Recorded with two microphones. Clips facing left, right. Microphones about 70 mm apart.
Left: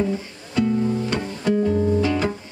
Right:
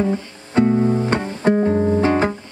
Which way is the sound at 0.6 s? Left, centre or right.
Right.